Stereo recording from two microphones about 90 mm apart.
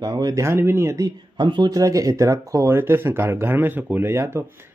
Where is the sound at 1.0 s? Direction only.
60° right (ahead or behind).